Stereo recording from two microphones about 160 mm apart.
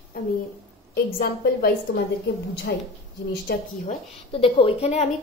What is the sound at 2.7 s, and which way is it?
Speech, 90° left.